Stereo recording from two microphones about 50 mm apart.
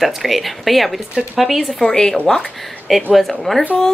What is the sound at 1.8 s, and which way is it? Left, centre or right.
Speech, centre.